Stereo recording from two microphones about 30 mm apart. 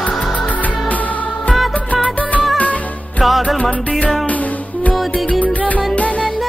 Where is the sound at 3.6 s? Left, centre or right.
Left.